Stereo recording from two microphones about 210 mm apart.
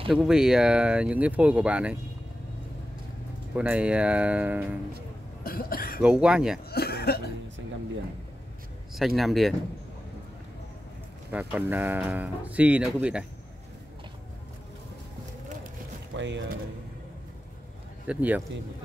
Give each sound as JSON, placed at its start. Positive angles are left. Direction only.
{"t": 0.1, "sound": "speech", "side_deg": 0}
{"t": 3.5, "sound": "speech", "side_deg": -5}
{"t": 5.4, "sound": "cough", "side_deg": 45}
{"t": 6.0, "sound": "speech", "side_deg": -5}
{"t": 6.7, "sound": "speech", "side_deg": 50}
{"t": 8.9, "sound": "speech", "side_deg": 0}
{"t": 11.3, "sound": "speech", "side_deg": -10}
{"t": 16.2, "sound": "speech", "side_deg": -60}
{"t": 18.0, "sound": "speech", "side_deg": -5}